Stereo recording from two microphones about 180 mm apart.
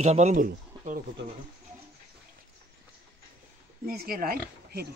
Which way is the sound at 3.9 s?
55° right (ahead or behind).